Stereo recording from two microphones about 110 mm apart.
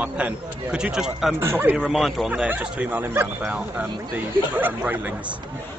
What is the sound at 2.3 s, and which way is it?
Speech, 15° right (ahead or behind).